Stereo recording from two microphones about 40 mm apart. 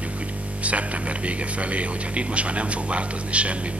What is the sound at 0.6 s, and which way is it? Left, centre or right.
Speech, right.